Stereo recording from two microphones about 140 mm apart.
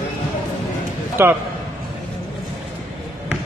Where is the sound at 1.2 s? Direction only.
20° right (ahead or behind).